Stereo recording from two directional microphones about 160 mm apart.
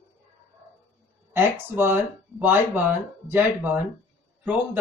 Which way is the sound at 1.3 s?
15° right (ahead or behind).